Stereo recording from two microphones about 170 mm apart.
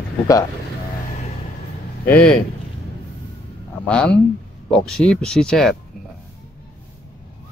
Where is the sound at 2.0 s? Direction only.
10° left (ahead or behind).